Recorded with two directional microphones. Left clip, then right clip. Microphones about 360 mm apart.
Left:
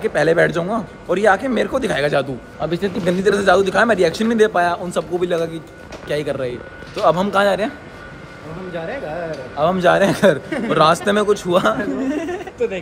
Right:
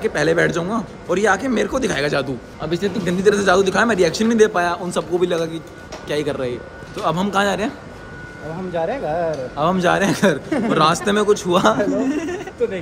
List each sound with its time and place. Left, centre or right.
0.0 s a man's voice: centre
8.7 s speech: right
9.6 s a man's voice: centre